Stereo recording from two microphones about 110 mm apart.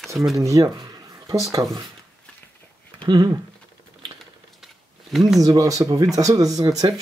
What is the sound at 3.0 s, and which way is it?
Typing, 45° right (ahead or behind).